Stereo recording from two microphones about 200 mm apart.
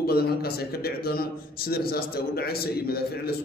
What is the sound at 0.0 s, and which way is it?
A man's voice, 50° left (ahead or behind).